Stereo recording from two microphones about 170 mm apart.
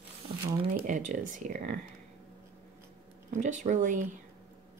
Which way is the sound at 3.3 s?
45° right (ahead or behind).